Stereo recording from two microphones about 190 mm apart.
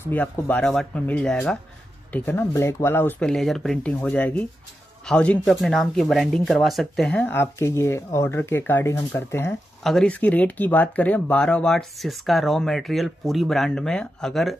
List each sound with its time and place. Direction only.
0.0 s speech: 10° left (ahead or behind)